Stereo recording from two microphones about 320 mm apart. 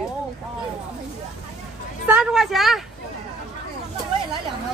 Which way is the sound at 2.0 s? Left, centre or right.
Centre.